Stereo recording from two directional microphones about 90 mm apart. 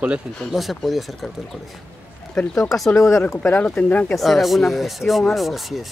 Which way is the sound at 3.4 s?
15° left (ahead or behind).